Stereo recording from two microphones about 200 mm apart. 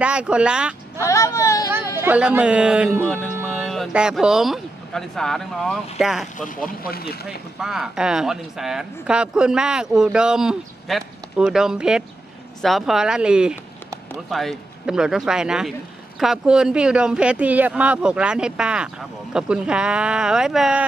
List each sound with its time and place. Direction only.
0.0 s speech: 5° right (ahead or behind)
1.0 s speech: 15° left (ahead or behind)
2.0 s speech: 10° right (ahead or behind)
3.0 s speech: 5° left (ahead or behind)
6.8 s speech: 50° left (ahead or behind)
7.2 s speech: 5° right (ahead or behind)